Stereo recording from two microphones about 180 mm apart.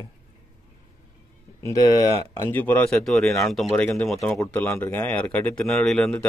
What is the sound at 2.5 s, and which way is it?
Speech, 10° left (ahead or behind).